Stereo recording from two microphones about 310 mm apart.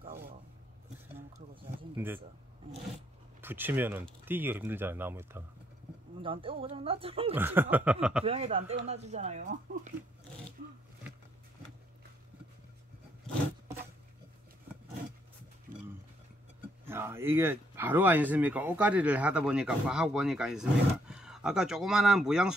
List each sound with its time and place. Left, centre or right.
1.5 s speech: centre
3.3 s speech: centre
7.3 s speech: centre
8.3 s speech: centre
16.8 s speech: centre